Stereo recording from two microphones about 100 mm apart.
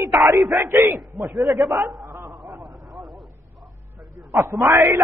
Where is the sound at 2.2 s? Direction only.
Centre (ahead or behind).